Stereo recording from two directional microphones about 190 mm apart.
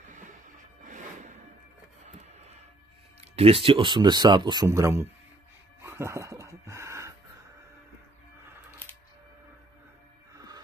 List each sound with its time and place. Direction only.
0.1 s music: 40° right (ahead or behind)
3.2 s speech: 30° right (ahead or behind); by 5.1 s 15° right (ahead or behind)
5.8 s a sound: 15° right (ahead or behind)
10.3 s music: 20° right (ahead or behind)